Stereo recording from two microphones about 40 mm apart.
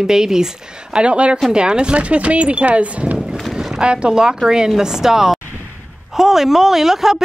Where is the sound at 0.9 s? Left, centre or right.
Right.